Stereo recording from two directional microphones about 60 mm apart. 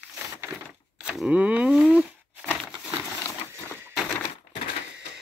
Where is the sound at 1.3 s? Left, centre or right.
Right.